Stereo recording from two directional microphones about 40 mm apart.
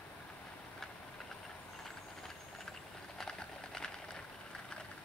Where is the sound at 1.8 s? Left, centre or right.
Centre.